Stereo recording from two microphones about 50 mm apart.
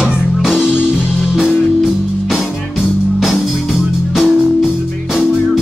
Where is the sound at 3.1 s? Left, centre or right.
Centre.